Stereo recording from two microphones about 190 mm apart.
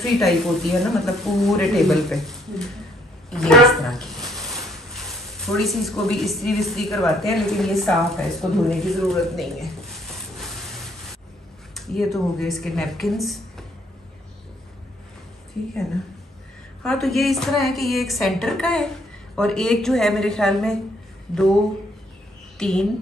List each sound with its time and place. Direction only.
0.0 s speech: centre (ahead or behind)
11.7 s speech: centre (ahead or behind)
16.8 s speech: centre (ahead or behind)
22.6 s speech: 5° left (ahead or behind)